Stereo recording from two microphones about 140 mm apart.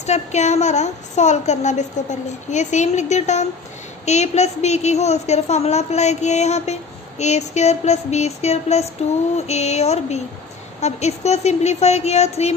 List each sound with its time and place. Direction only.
0.0 s a woman's voice: 55° left (ahead or behind)